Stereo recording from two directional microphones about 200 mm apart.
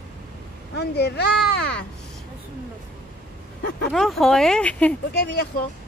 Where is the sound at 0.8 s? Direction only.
55° left (ahead or behind).